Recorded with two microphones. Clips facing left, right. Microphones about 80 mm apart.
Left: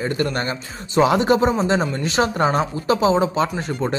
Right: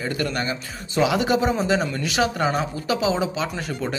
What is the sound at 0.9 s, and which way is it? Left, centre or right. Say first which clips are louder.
A man's voice: left 4 dB; left.